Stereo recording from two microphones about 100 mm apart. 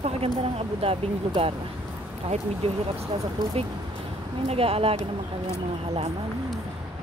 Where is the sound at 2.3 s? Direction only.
90° right.